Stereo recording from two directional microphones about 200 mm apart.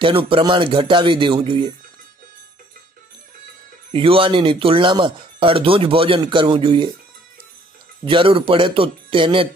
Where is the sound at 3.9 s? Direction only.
25° right (ahead or behind).